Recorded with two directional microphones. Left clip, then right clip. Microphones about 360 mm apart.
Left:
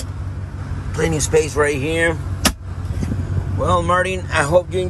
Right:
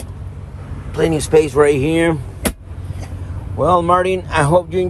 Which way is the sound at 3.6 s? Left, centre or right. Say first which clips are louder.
Right 4 dB; centre.